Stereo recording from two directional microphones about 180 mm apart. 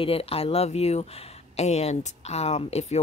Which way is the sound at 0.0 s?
30° left (ahead or behind).